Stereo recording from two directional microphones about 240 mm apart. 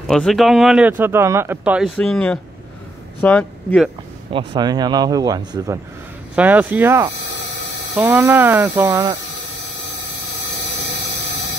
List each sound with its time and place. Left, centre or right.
0.0 s speech: centre
4.3 s speech: centre